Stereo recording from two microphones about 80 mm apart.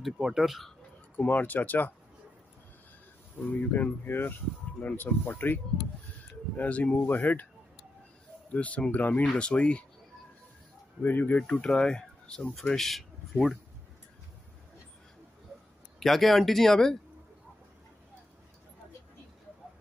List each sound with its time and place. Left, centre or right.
0.0 s speech: centre
1.1 s speech: left
3.4 s speech: left
8.5 s speech: centre
11.0 s speech: left
11.6 s speech: centre
16.0 s speech: centre